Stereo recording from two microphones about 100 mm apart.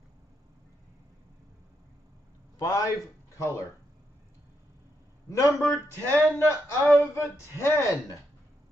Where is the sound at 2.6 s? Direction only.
35° left (ahead or behind).